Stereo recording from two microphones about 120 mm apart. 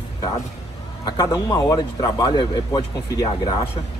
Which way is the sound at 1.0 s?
35° left (ahead or behind).